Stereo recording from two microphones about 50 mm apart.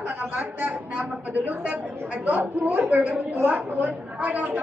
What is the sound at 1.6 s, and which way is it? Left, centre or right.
A woman's voice, right.